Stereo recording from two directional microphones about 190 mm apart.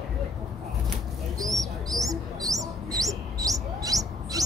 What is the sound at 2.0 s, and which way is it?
Bird, 20° right (ahead or behind).